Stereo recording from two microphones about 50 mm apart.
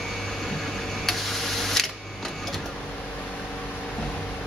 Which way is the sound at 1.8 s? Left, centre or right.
Centre.